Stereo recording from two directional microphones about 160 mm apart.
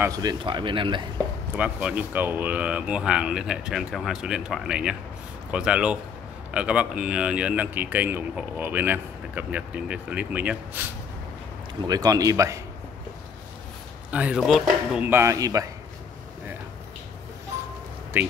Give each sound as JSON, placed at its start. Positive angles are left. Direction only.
{"t": 0.0, "sound": "speech", "side_deg": -25}
{"t": 1.5, "sound": "a man's voice", "side_deg": -10}
{"t": 11.9, "sound": "speech", "side_deg": -20}
{"t": 14.1, "sound": "a man's voice", "side_deg": -5}
{"t": 15.0, "sound": "speech", "side_deg": -15}